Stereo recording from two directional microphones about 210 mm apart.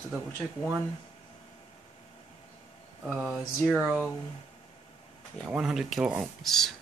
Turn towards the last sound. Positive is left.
turn(degrees=0)  # may be behind; listen again after turning